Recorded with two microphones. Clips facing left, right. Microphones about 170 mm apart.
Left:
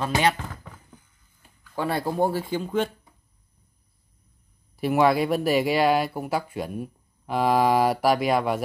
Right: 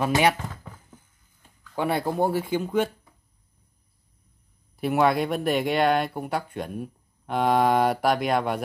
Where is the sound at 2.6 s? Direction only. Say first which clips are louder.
Left 1 dB; 5° right (ahead or behind).